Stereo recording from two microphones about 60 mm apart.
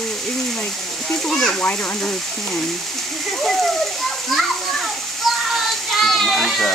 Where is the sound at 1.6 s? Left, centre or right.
Centre.